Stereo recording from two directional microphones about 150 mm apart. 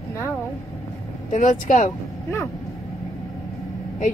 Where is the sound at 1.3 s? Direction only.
60° left (ahead or behind).